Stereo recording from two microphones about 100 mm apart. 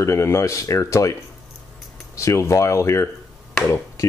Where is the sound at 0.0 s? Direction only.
30° left (ahead or behind).